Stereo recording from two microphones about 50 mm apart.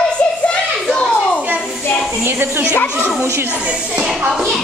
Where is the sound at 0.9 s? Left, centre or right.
Centre.